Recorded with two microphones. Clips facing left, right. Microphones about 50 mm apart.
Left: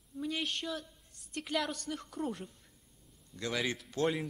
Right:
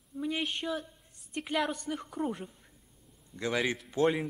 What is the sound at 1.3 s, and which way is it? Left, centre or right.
A man's voice, centre.